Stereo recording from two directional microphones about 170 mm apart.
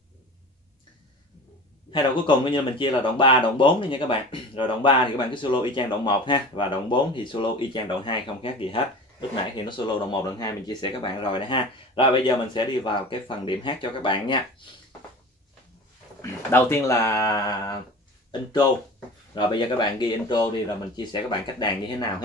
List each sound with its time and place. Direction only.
1.9 s speech: 25° left (ahead or behind)
16.2 s speech: 15° left (ahead or behind)
19.3 s speech: 25° left (ahead or behind)